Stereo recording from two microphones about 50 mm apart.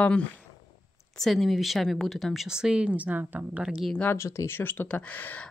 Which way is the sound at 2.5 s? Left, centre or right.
Centre.